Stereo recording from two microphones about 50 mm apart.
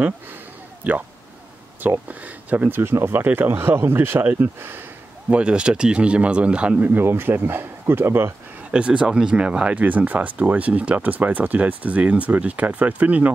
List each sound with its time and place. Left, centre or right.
1.8 s speech: right
2.7 s speech: right
5.3 s speech: right
6.9 s speech: right
8.7 s speech: right